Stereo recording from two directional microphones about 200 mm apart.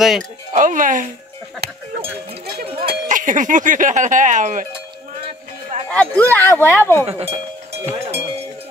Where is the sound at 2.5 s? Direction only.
45° right (ahead or behind).